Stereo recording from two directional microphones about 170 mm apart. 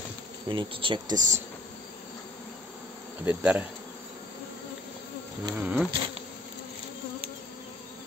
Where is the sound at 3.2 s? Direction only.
10° right (ahead or behind).